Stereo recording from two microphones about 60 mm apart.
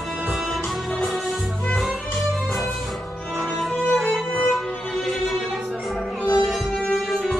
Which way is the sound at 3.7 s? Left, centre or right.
Centre.